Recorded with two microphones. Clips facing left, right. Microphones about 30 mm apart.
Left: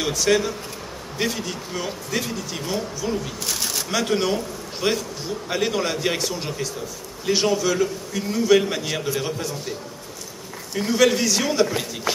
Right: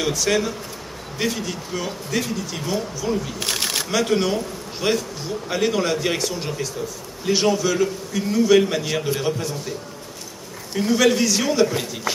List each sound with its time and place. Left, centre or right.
0.0 s a man's voice: centre
3.3 s speech: right
3.9 s a man's voice: centre
10.8 s a man's voice: centre